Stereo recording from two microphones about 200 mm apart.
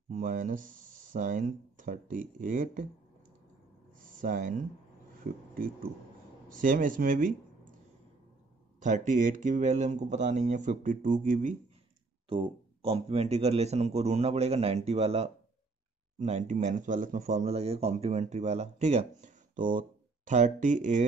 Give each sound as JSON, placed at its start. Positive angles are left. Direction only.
{"t": 0.1, "sound": "a man's voice", "side_deg": -40}
{"t": 3.9, "sound": "a sound", "side_deg": -40}
{"t": 5.2, "sound": "speech", "side_deg": -50}
{"t": 6.5, "sound": "a man's voice", "side_deg": -40}
{"t": 8.7, "sound": "a man's voice", "side_deg": -40}
{"t": 12.8, "sound": "a man's voice", "side_deg": -30}